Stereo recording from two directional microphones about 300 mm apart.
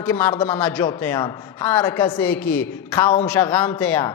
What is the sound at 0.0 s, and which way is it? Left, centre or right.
A man's voice, centre.